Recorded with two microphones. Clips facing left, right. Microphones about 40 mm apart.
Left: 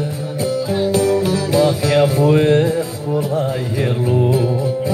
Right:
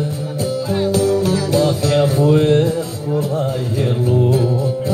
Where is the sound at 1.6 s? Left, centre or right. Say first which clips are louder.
Left 3 dB; left.